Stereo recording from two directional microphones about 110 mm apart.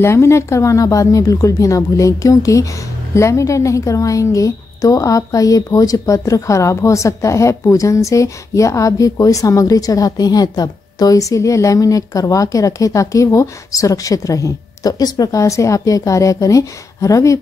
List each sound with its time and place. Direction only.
0.0 s a woman's voice: 25° left (ahead or behind)